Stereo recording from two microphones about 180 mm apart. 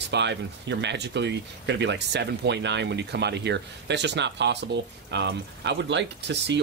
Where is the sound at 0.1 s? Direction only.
75° right (ahead or behind).